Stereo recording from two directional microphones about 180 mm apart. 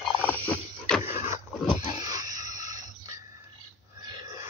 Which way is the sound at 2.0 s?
20° right (ahead or behind).